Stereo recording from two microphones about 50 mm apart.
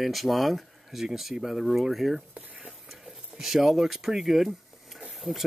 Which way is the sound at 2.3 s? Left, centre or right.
Right.